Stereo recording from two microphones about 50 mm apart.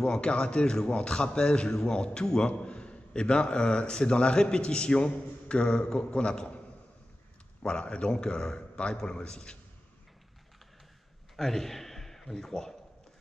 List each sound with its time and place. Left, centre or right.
0.0 s a man's voice: centre
7.6 s a man's voice: centre
11.3 s a man's voice: centre